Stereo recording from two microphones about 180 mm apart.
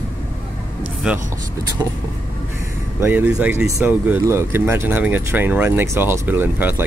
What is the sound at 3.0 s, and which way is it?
Speech, 10° right (ahead or behind).